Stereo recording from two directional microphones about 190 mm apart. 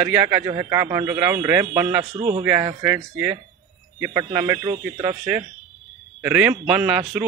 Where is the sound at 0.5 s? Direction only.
15° right (ahead or behind).